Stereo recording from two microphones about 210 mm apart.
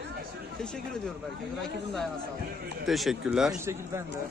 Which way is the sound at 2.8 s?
Centre (ahead or behind).